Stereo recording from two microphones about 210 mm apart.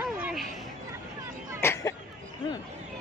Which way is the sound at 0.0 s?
5° right (ahead or behind).